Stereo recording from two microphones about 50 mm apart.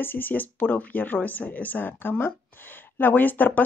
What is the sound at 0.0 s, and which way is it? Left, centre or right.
Speech, left.